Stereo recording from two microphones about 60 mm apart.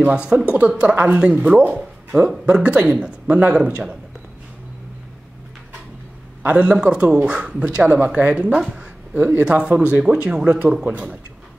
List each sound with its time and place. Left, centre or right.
0.0 s speech: centre
6.4 s speech: right
9.4 s speech: centre